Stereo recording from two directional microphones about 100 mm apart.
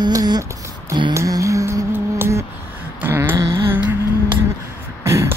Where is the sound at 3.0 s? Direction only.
20° right (ahead or behind).